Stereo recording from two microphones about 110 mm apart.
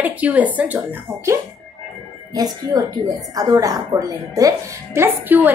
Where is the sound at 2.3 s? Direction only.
35° right (ahead or behind).